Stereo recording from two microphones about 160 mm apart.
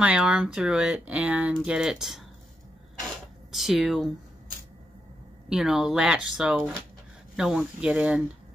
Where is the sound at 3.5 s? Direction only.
Centre (ahead or behind).